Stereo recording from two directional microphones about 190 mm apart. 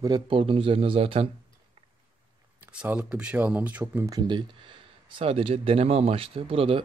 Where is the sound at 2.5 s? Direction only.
10° right (ahead or behind).